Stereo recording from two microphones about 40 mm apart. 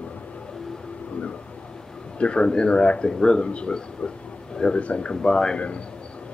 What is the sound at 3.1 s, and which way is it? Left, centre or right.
A man's voice, centre.